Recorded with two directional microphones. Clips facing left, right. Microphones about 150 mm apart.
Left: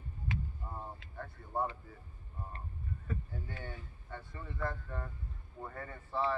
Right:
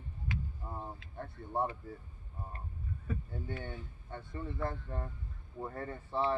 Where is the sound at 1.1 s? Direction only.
25° right (ahead or behind).